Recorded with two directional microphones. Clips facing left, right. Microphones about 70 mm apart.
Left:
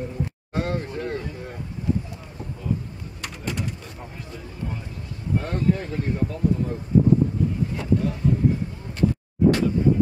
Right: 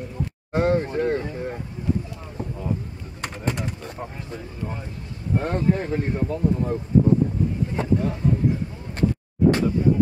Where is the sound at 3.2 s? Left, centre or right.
Right.